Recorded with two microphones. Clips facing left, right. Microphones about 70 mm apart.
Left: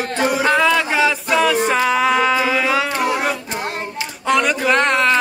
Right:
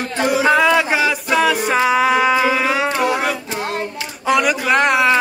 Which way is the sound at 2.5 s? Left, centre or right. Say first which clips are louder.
Even; right.